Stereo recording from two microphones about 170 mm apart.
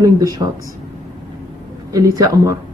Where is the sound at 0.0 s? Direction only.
20° right (ahead or behind).